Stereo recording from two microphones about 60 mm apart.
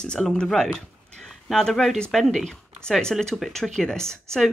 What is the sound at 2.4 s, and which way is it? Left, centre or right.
A woman's voice, centre.